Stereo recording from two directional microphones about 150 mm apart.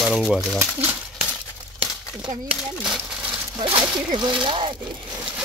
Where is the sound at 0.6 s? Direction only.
15° right (ahead or behind).